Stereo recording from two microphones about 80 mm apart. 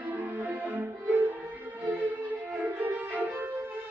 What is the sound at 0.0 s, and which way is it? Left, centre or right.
Music, centre.